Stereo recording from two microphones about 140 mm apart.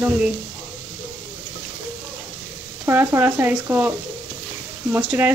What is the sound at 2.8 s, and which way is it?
A woman's voice, 15° right (ahead or behind).